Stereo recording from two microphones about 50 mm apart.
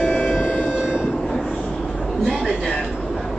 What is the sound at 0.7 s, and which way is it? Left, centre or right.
Train, centre.